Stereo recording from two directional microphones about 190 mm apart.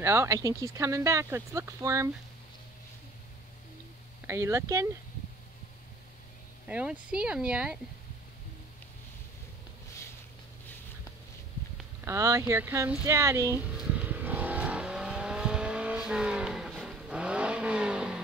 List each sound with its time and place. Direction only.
0.0 s speech: 15° right (ahead or behind)
4.3 s speech: 15° right (ahead or behind)
6.7 s speech: 5° right (ahead or behind)
12.0 s a sound: 15° right (ahead or behind)